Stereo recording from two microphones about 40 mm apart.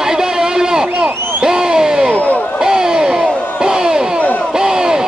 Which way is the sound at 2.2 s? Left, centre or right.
Left.